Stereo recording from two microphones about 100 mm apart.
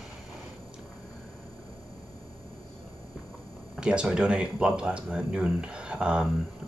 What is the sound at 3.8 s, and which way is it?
Speech, 10° right (ahead or behind).